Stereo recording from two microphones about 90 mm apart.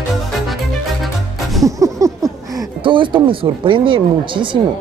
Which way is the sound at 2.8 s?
65° right (ahead or behind).